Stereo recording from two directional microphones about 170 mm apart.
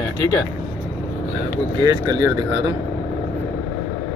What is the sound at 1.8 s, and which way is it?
Speech, 25° right (ahead or behind).